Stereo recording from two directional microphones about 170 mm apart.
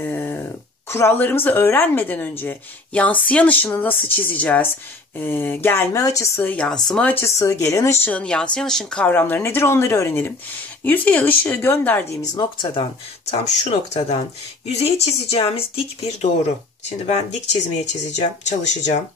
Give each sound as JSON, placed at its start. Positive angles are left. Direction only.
{"t": 0.0, "sound": "a sound", "side_deg": 15}
{"t": 0.8, "sound": "speech", "side_deg": 15}
{"t": 12.4, "sound": "speech", "side_deg": 25}
{"t": 13.3, "sound": "speech", "side_deg": 40}